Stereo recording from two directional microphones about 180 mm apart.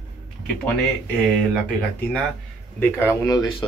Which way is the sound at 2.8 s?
15° left (ahead or behind).